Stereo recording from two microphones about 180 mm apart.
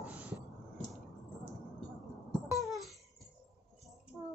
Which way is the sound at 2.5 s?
Centre (ahead or behind).